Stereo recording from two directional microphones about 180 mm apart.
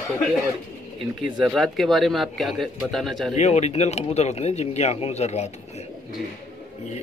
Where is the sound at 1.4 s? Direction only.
Centre (ahead or behind).